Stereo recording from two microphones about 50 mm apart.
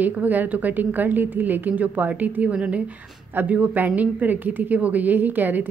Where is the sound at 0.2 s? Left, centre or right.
Right.